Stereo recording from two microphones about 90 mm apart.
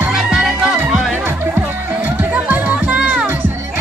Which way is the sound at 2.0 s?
20° right (ahead or behind).